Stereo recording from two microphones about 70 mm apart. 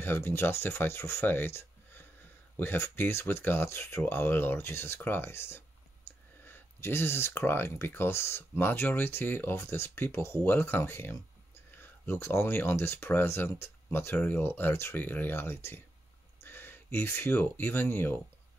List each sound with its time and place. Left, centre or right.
0.0 s speech: left